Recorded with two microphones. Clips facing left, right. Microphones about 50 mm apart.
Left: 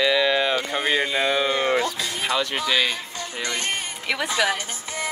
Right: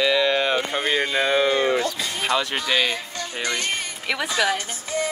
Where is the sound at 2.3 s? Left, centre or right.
Centre.